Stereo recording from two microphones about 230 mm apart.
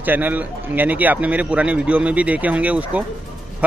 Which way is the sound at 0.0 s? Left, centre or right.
Centre.